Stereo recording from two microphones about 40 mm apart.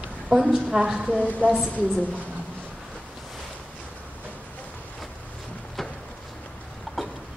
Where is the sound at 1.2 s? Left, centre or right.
Right.